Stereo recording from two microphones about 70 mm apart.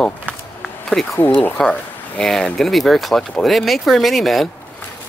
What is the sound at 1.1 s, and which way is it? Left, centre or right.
Speech, left.